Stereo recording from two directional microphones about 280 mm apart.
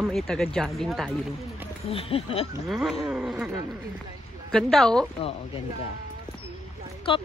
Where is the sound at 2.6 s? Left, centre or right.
Centre.